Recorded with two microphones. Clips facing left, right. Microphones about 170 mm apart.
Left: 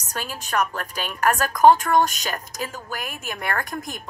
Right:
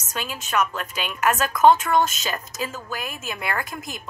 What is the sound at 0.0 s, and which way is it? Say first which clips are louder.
A woman's voice: even; 35° left (ahead or behind).